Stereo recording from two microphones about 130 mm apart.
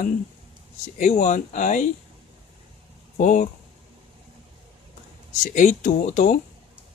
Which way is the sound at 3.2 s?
75° left (ahead or behind).